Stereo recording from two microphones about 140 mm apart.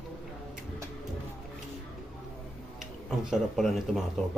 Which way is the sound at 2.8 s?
5° right (ahead or behind).